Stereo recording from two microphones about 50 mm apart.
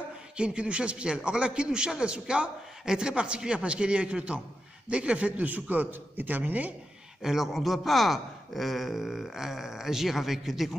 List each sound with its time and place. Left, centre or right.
0.4 s a man's voice: right
7.2 s speech: centre